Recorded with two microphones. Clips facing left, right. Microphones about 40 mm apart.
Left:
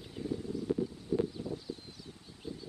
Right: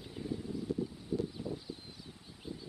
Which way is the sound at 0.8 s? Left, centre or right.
Centre.